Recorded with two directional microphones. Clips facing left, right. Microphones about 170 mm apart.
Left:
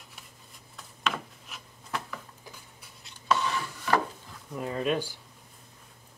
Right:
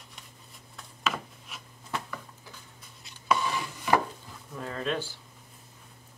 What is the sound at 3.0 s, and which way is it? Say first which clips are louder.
Chopping: even; 10° right (ahead or behind).